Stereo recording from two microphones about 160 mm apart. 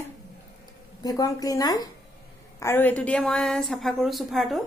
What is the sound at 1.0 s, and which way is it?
A woman's voice, 20° left (ahead or behind).